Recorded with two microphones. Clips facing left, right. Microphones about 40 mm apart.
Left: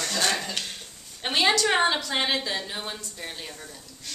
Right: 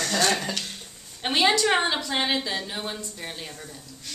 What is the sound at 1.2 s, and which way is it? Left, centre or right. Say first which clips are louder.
Music: right 1 dB; centre.